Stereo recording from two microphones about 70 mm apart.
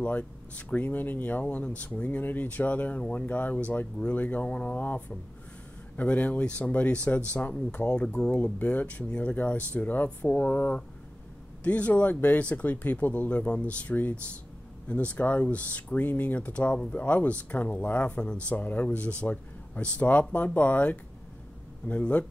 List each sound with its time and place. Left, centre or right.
0.0 s speech: centre